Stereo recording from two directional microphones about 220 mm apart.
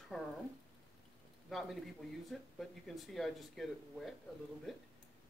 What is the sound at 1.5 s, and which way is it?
Speech, centre (ahead or behind).